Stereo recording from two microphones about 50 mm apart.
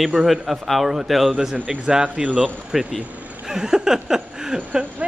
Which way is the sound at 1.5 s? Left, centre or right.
Right.